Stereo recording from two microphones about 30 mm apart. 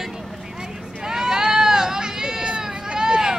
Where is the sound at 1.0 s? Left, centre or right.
Centre.